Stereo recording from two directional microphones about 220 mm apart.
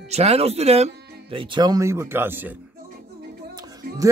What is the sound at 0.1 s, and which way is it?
Speech, 30° right (ahead or behind).